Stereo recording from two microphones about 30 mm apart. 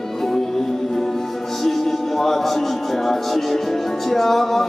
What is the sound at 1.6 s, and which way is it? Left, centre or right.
Music, centre.